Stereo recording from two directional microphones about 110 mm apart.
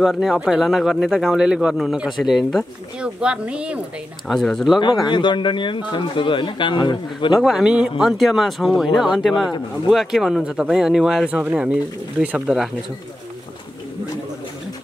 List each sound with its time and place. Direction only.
0.0 s speech: 5° right (ahead or behind)
4.3 s speech: 5° left (ahead or behind)
5.0 s speech: 45° left (ahead or behind)
7.3 s speech: 5° right (ahead or behind)